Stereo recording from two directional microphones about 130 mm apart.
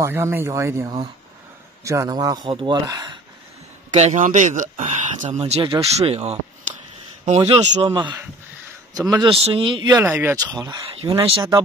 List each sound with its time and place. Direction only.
0.0 s speech: 20° right (ahead or behind)
3.9 s speech: 60° right (ahead or behind)
5.4 s speech: 40° right (ahead or behind)
7.8 s speech: 40° right (ahead or behind)
9.4 s speech: 45° right (ahead or behind)
10.0 s speech: 15° right (ahead or behind)
10.3 s speech: 30° right (ahead or behind)
10.9 s speech: 45° right (ahead or behind)